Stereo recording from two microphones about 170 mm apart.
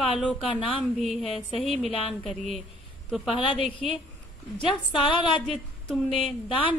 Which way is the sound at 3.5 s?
30° left (ahead or behind).